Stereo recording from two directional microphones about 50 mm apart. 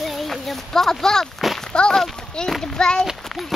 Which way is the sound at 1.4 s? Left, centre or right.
Centre.